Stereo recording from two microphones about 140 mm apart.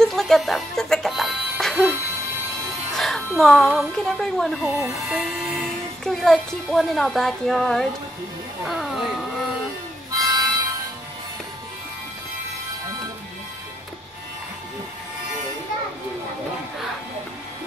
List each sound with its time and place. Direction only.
0.0 s music: 5° left (ahead or behind)
2.9 s speech: centre (ahead or behind)
10.1 s harmonica: 25° right (ahead or behind)